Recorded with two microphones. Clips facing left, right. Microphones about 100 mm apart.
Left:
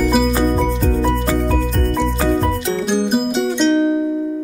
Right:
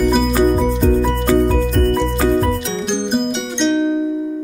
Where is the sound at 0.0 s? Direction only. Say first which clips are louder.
Even; centre (ahead or behind).